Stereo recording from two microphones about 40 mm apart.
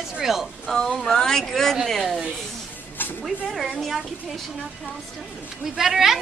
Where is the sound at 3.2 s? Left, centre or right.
Centre.